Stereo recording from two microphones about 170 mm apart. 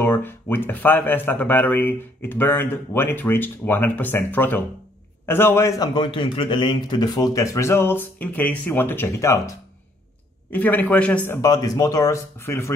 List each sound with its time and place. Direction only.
0.0 s speech: 10° left (ahead or behind)
10.5 s speech: 10° left (ahead or behind)